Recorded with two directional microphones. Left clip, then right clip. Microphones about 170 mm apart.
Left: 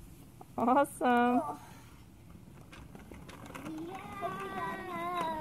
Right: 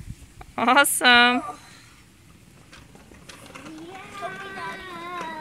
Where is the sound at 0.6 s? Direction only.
15° right (ahead or behind).